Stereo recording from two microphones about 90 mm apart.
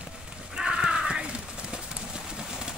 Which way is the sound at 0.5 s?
10° right (ahead or behind).